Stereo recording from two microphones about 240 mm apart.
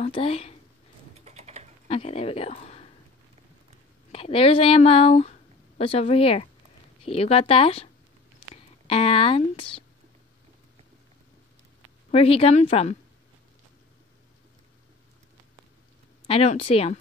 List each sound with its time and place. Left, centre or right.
0.0 s speech: left
1.2 s typing: right
1.9 s speech: left
4.1 s speech: left
12.1 s speech: left
16.3 s speech: left